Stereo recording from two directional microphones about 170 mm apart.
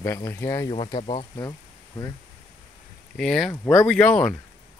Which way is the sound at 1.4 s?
20° left (ahead or behind).